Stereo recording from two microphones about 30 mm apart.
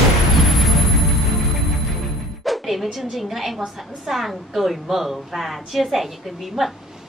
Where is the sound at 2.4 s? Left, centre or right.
Centre.